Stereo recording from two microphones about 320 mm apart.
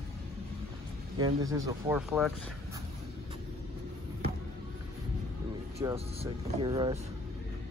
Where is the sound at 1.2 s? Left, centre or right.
Centre.